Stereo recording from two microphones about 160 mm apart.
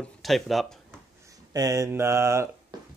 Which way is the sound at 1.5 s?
20° right (ahead or behind).